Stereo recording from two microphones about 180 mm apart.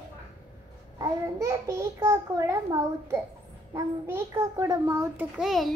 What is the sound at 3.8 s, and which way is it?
A child's voice, 15° right (ahead or behind).